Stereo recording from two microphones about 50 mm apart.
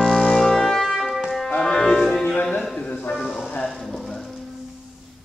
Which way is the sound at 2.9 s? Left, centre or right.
Left.